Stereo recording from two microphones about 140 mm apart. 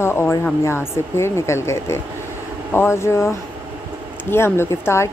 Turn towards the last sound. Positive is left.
turn(degrees=20)  # may be behind; listen again after turning